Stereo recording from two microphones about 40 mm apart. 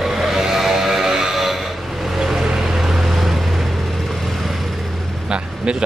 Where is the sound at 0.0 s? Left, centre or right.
Centre.